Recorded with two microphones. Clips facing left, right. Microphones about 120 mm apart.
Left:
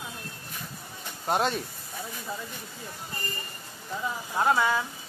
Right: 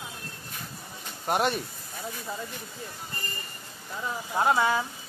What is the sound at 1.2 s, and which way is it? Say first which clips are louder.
Speech: even; 10° right (ahead or behind).